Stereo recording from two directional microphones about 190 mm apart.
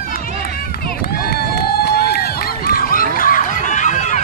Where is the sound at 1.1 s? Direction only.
55° left (ahead or behind).